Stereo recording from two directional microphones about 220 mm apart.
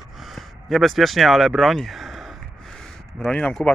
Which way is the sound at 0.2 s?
Centre (ahead or behind).